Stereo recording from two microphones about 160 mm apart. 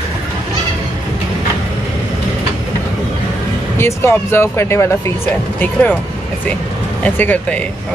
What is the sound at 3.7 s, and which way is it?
Speech, 15° left (ahead or behind).